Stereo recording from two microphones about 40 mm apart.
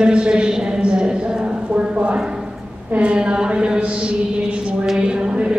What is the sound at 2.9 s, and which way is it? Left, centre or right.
Mantra, right.